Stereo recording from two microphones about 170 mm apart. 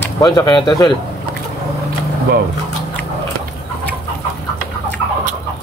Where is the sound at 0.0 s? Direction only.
20° left (ahead or behind).